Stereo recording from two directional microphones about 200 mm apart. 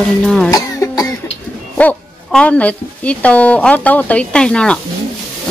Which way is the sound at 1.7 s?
5° left (ahead or behind).